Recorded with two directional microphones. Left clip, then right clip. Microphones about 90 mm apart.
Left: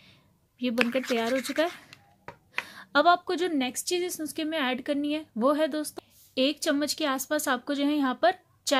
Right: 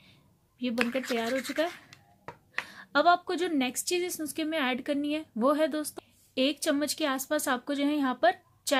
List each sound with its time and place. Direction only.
0.6 s speech: 45° left (ahead or behind)
1.3 s speech: 10° left (ahead or behind)
2.6 s a sound: 50° left (ahead or behind)
3.3 s speech: 20° left (ahead or behind)
3.5 s speech: 5° left (ahead or behind); by 8.7 s 25° left (ahead or behind)